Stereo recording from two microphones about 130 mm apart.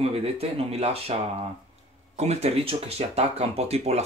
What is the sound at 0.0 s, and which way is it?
Speech, 50° right (ahead or behind).